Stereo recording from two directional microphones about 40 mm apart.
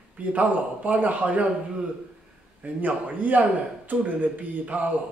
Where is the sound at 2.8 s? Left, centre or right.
Right.